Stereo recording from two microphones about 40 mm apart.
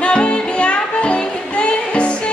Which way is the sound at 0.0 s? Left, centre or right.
Left.